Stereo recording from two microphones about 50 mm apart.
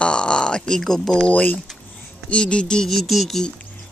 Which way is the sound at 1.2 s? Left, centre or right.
Left.